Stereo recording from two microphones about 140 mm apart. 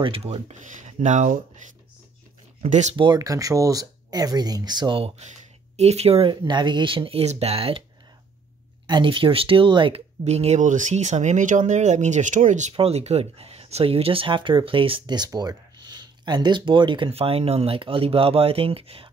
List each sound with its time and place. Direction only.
0.0 s speech: 40° right (ahead or behind); by 1.4 s 60° right (ahead or behind)
2.6 s speech: 50° right (ahead or behind)
3.0 s speech: 25° right (ahead or behind)
5.8 s speech: 50° right (ahead or behind)
6.4 s speech: 35° right (ahead or behind)
8.8 s speech: 35° right (ahead or behind)
10.2 s speech: 50° right (ahead or behind)
12.7 s speech: 45° right (ahead or behind)